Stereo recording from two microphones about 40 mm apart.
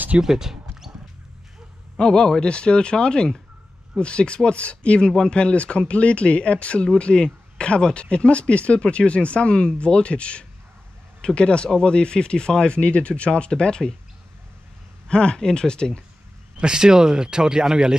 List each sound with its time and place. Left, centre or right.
0.2 s a sound: centre
2.0 s speech: left
5.0 s speech: centre
5.3 s speech: left
15.0 s speech: left
16.6 s speech: centre